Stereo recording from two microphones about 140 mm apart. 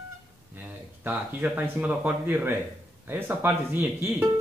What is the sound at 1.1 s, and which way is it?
Speech, 10° right (ahead or behind).